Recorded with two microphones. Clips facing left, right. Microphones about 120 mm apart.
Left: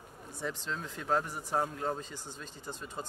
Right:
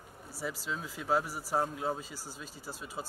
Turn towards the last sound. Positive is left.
turn(degrees=-5)  # may be behind; listen again after turning